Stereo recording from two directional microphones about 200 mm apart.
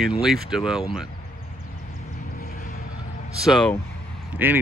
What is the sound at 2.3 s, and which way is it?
Vehicle, 50° left (ahead or behind).